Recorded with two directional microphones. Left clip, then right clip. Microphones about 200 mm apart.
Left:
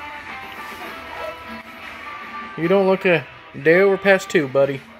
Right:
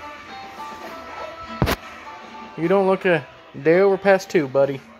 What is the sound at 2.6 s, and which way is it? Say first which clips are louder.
Speech: left 1 dB; centre (ahead or behind).